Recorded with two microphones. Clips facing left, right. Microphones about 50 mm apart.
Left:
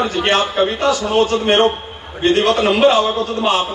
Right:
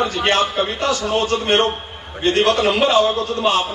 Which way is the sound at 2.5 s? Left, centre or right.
Left.